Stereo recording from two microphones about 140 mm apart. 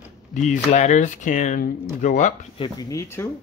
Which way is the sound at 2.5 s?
30° left (ahead or behind).